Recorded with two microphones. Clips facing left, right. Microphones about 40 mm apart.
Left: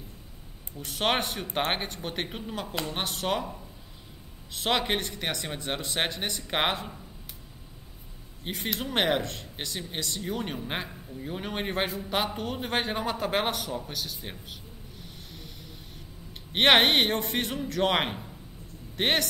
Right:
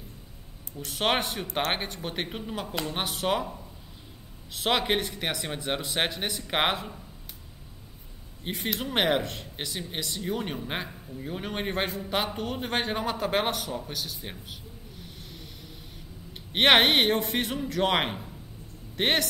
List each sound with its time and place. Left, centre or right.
0.7 s speech: centre
8.5 s speech: centre